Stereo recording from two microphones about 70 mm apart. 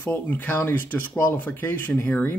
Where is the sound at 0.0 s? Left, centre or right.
Left.